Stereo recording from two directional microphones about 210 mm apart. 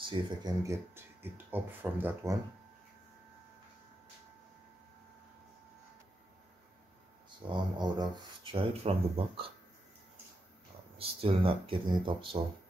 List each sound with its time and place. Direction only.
0.0 s speech: 20° right (ahead or behind)
7.2 s speech: 20° right (ahead or behind)
11.0 s speech: 25° right (ahead or behind)